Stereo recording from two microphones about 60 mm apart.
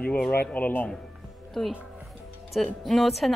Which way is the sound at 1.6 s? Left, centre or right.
Centre.